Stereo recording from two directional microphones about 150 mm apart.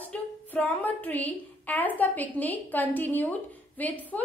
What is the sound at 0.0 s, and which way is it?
A woman's voice, 10° left (ahead or behind).